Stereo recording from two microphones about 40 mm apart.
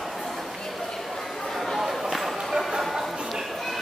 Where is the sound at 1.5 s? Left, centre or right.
Centre.